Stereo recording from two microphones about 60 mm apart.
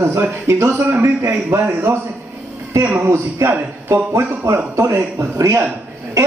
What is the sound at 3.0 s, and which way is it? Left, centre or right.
A man's voice, right.